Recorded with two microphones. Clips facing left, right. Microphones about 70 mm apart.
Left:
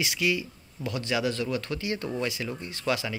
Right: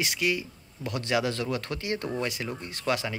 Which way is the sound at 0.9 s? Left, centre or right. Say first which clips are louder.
Right 1 dB; right.